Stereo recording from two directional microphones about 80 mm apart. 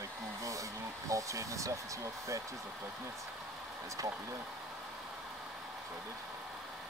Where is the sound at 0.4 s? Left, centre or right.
Right.